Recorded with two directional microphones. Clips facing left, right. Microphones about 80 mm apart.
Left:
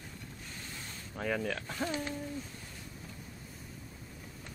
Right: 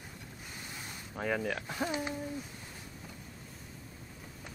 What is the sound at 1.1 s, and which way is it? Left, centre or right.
Speech, centre.